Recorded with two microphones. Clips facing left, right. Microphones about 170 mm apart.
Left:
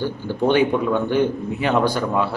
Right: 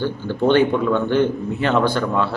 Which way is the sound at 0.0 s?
10° left (ahead or behind).